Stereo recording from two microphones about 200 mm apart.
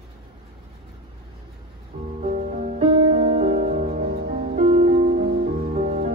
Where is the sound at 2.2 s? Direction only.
40° right (ahead or behind).